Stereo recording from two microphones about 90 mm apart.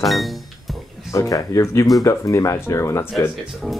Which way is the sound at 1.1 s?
40° left (ahead or behind).